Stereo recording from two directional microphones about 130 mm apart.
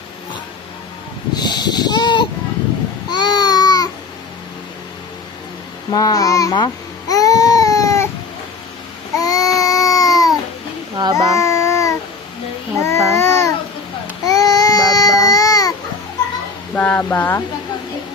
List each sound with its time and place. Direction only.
1.3 s a sound: 35° left (ahead or behind)
5.9 s baby cry: 30° left (ahead or behind)
9.2 s baby cry: 25° left (ahead or behind)
11.1 s child singing: 25° left (ahead or behind)
13.1 s babbling: 25° left (ahead or behind)
14.2 s baby cry: 25° left (ahead or behind)
16.7 s speech: 10° left (ahead or behind)